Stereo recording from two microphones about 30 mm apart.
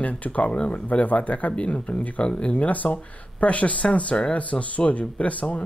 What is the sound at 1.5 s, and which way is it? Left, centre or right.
Speech, left.